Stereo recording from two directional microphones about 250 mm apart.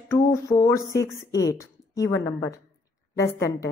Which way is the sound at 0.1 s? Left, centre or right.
Centre.